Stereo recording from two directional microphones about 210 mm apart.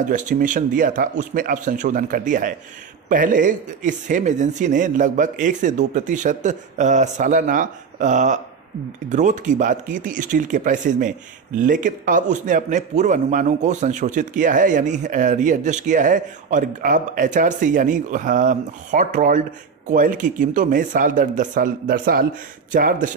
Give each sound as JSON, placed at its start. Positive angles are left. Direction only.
{"t": 0.0, "sound": "speech", "side_deg": -35}